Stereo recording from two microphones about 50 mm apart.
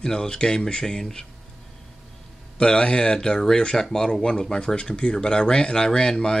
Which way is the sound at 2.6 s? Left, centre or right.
Centre.